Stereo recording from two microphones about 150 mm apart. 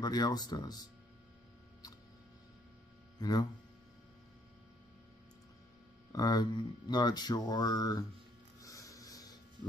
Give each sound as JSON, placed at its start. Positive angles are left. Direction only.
{"t": 0.0, "sound": "speech", "side_deg": 25}
{"t": 3.2, "sound": "speech", "side_deg": 25}
{"t": 6.1, "sound": "speech", "side_deg": 25}
{"t": 8.5, "sound": "snort", "side_deg": 20}